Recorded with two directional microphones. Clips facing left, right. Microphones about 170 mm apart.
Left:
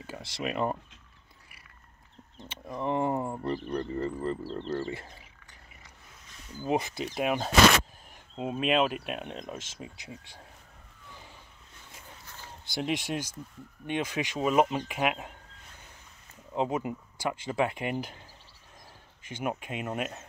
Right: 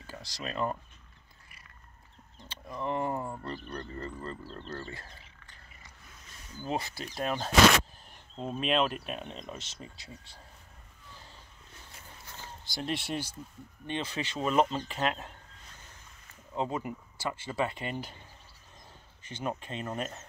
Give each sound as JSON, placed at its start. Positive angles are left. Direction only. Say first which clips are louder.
{"t": 0.0, "sound": "speech", "louder": "left 6 dB", "side_deg": 20}
{"t": 2.4, "sound": "speech", "louder": "left 3 dB", "side_deg": 20}
{"t": 6.6, "sound": "speech", "louder": "left 5 dB", "side_deg": 20}
{"t": 12.8, "sound": "speech", "louder": "left 2 dB", "side_deg": 10}
{"t": 16.5, "sound": "speech", "louder": "left 4 dB", "side_deg": 20}
{"t": 19.2, "sound": "speech", "louder": "left 2 dB", "side_deg": 10}